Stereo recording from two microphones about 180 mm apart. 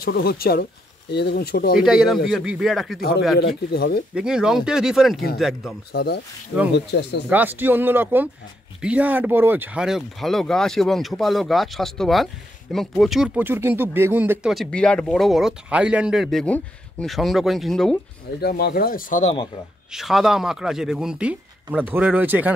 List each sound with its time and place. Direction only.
0.0 s speech: 60° left (ahead or behind)
1.8 s speech: 5° right (ahead or behind)
3.3 s speech: 65° left (ahead or behind)
4.1 s speech: 5° right (ahead or behind)
5.9 s speech: 65° left (ahead or behind)
7.2 s speech: 10° right (ahead or behind)
14.5 s speech: 5° left (ahead or behind)
18.4 s speech: 60° left (ahead or behind)
19.9 s speech: centre (ahead or behind)